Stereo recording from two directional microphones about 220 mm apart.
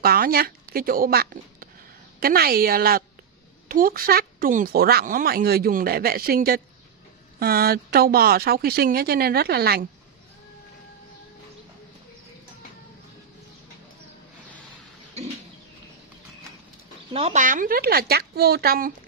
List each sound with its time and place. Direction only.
0.0 s a woman's voice: 45° right (ahead or behind)
17.1 s speech: 30° right (ahead or behind)